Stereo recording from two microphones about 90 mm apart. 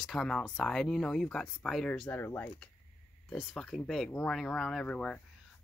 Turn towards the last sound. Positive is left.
turn(degrees=10)  # may be behind; listen again after turning